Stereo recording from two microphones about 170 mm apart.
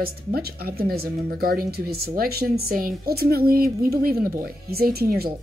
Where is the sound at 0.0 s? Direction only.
65° right (ahead or behind).